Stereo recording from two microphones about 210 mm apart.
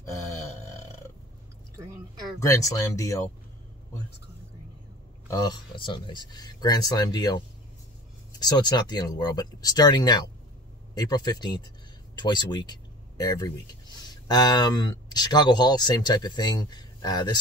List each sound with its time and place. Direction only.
2.4 s speech: 15° left (ahead or behind)
5.3 s speech: 20° left (ahead or behind)